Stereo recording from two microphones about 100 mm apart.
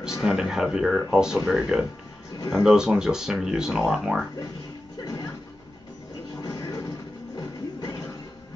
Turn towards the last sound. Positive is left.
turn(degrees=35)  # may be behind; listen again after turning